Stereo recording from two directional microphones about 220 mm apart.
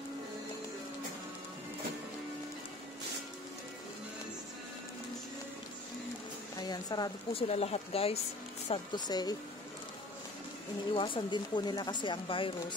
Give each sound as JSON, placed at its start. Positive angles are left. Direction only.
{"t": 6.5, "sound": "speech", "side_deg": 20}
{"t": 11.0, "sound": "speech", "side_deg": 20}